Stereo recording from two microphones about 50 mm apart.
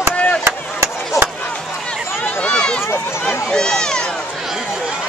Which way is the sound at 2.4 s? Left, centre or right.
Centre.